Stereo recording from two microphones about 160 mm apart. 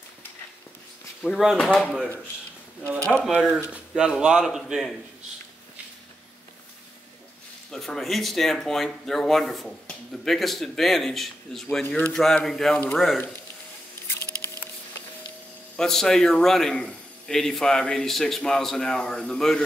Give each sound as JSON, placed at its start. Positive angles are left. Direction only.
{"t": 1.2, "sound": "speech", "side_deg": 0}
{"t": 3.3, "sound": "speech", "side_deg": -5}
{"t": 7.7, "sound": "speech", "side_deg": 0}
{"t": 15.7, "sound": "speech", "side_deg": 5}